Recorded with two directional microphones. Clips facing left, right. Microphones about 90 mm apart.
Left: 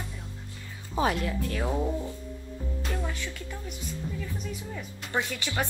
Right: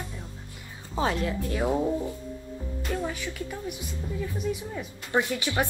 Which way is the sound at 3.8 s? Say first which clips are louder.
Right 2 dB; 15° right (ahead or behind).